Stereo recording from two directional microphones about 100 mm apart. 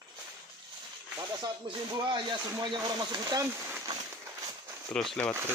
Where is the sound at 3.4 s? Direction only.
20° right (ahead or behind).